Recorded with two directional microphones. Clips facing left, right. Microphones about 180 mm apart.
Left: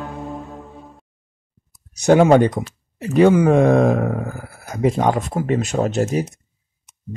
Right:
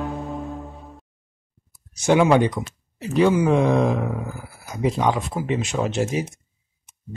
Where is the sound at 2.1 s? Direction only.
45° left (ahead or behind).